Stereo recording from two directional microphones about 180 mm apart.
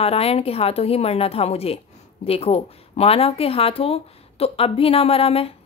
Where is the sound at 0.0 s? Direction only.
35° left (ahead or behind).